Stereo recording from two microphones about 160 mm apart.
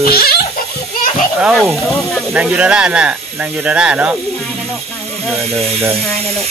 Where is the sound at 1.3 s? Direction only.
5° right (ahead or behind).